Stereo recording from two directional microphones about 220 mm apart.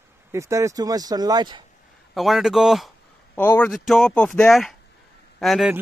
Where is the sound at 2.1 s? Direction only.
Centre (ahead or behind).